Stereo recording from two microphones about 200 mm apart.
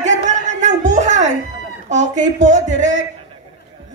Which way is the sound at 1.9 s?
35° right (ahead or behind).